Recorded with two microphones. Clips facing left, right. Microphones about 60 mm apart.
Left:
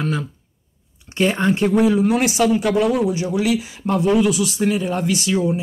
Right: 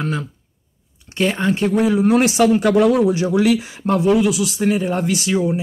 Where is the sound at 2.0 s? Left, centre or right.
Right.